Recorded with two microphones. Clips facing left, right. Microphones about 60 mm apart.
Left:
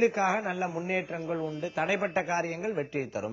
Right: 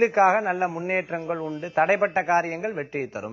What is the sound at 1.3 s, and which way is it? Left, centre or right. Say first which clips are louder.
Speech: right 3 dB; centre.